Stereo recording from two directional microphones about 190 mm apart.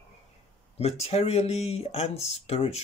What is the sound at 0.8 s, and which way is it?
Speech, 35° left (ahead or behind).